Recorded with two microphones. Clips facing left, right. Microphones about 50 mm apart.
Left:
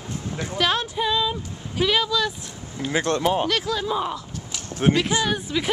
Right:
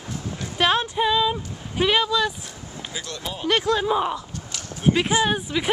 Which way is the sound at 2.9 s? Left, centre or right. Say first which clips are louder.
Left 13 dB; left.